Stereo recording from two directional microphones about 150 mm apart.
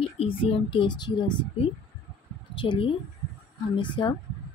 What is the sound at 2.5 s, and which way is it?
Speech, 35° left (ahead or behind).